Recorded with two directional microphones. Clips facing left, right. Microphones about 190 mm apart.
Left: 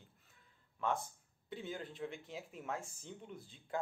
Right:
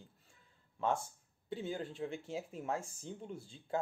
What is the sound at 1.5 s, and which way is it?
Speech, 30° right (ahead or behind).